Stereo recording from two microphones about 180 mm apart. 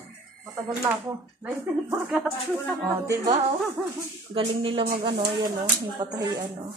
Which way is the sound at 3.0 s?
20° right (ahead or behind).